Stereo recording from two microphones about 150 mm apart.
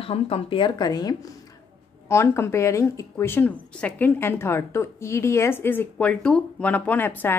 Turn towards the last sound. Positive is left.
turn(degrees=10)  # may be behind; listen again after turning